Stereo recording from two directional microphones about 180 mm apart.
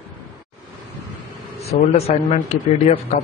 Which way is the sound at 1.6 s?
35° left (ahead or behind).